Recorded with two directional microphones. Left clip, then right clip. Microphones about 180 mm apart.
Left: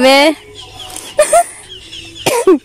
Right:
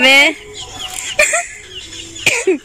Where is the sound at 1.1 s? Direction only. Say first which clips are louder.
Left 4 dB; 35° left (ahead or behind).